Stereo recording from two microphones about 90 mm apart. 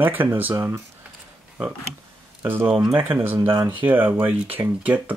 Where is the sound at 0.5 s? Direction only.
30° right (ahead or behind).